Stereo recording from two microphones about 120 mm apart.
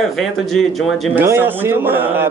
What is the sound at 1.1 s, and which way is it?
Speech, 20° right (ahead or behind).